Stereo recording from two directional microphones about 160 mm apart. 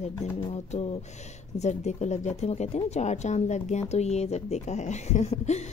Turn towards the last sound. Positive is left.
turn(degrees=45)  # may be behind; listen again after turning